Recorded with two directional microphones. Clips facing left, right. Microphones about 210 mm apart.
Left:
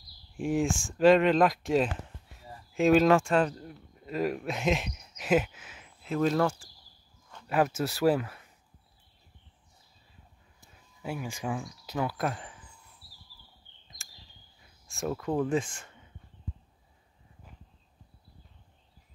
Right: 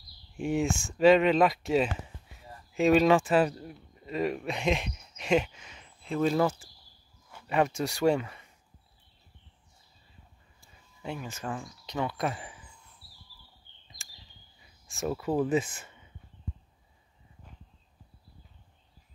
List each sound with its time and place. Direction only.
0.4 s speech: centre (ahead or behind)
7.2 s a sound: 10° right (ahead or behind)
7.5 s speech: 5° left (ahead or behind)
11.0 s speech: 10° left (ahead or behind)
14.9 s speech: centre (ahead or behind)